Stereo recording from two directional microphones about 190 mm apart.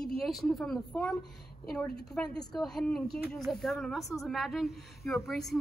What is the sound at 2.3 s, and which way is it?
Speech, centre (ahead or behind).